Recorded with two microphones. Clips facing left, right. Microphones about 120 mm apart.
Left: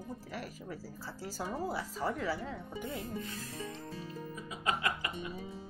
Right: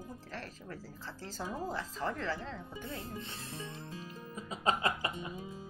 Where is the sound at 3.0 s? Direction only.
30° right (ahead or behind).